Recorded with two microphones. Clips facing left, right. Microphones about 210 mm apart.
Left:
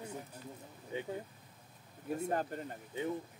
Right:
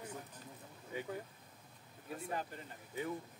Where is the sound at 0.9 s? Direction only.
25° left (ahead or behind).